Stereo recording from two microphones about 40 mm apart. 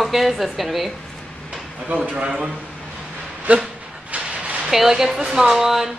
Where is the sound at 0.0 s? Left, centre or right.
Centre.